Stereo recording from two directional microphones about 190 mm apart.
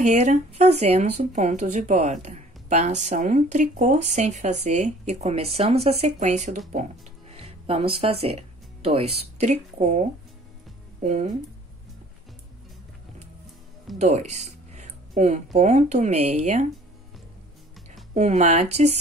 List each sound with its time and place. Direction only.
0.0 s speech: 40° right (ahead or behind)
13.9 s speech: 35° right (ahead or behind)
18.1 s speech: 35° right (ahead or behind)